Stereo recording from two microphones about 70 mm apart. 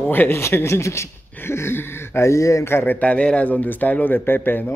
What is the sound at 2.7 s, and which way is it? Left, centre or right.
Speech, left.